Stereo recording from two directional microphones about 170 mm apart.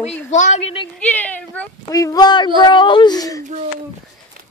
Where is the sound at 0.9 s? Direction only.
10° left (ahead or behind).